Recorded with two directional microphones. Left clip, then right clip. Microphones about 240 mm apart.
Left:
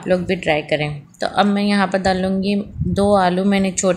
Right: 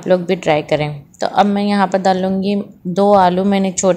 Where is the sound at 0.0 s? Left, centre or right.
Centre.